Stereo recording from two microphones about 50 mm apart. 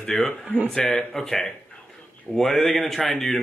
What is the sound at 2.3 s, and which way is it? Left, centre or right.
A man's voice, centre.